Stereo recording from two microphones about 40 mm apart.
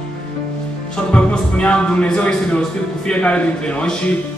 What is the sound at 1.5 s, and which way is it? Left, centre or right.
A man's voice, left.